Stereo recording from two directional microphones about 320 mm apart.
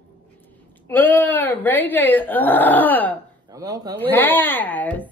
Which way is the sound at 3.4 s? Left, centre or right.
Centre.